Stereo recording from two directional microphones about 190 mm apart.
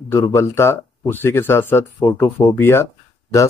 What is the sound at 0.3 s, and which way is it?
Speech, 15° left (ahead or behind).